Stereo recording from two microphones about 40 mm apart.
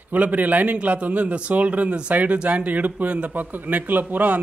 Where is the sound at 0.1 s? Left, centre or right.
Right.